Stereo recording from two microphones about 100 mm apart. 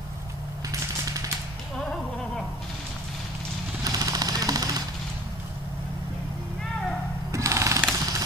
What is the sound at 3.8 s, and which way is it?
Vehicle, 40° right (ahead or behind).